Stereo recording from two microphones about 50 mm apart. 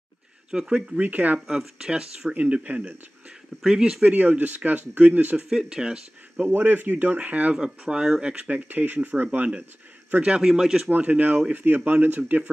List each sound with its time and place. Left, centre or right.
0.5 s speech: centre
1.0 s speech: right
1.8 s speech: centre
2.3 s speech: right
3.6 s speech: centre
4.1 s speech: right
5.5 s speech: centre
6.5 s speech: right
7.5 s speech: centre
8.5 s speech: right
10.4 s speech: centre
10.9 s speech: right